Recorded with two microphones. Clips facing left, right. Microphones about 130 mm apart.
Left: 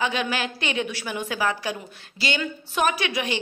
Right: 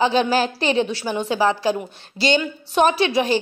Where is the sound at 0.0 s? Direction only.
30° right (ahead or behind).